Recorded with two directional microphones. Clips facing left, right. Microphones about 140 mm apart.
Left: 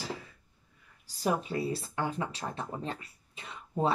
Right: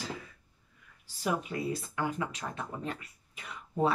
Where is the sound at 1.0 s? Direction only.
35° left (ahead or behind).